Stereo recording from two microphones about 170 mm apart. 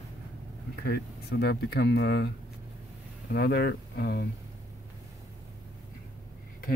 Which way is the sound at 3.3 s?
70° left (ahead or behind).